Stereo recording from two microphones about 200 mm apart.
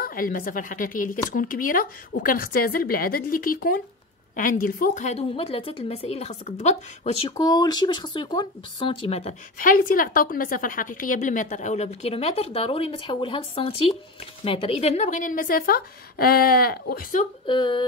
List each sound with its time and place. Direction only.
0.0 s a woman's voice: 45° left (ahead or behind)
7.2 s speech: 20° left (ahead or behind)
9.6 s a woman's voice: 45° left (ahead or behind)
17.5 s speech: 25° left (ahead or behind)